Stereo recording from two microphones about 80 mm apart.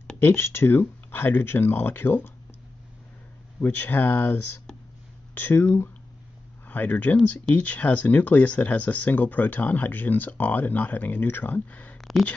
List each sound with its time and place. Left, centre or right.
0.2 s speech: left
3.6 s speech: left
6.7 s speech: left
12.0 s a sound: centre